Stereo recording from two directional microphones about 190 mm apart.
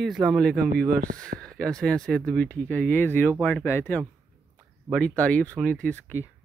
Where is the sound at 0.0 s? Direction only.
Centre (ahead or behind).